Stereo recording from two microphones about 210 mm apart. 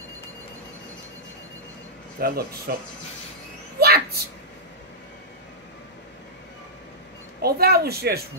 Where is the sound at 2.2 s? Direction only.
45° right (ahead or behind).